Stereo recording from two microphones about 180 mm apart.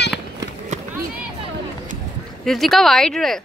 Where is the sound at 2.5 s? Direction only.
Centre (ahead or behind).